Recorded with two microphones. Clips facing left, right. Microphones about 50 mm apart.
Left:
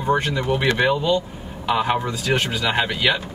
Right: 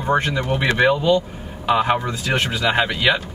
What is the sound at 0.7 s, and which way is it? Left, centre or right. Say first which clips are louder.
Speech: right 5 dB; centre.